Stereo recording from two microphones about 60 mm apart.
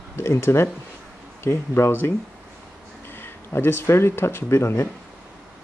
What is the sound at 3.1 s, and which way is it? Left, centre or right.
Speech, left.